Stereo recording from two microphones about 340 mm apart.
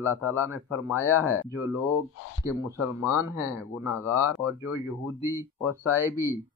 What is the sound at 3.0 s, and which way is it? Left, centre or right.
Speech, centre.